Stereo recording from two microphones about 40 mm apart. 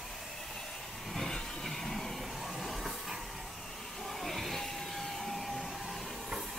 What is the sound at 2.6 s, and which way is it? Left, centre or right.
Train, centre.